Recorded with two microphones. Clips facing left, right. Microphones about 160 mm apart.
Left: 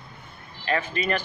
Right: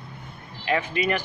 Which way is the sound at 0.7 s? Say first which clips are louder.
Right 2 dB; 15° right (ahead or behind).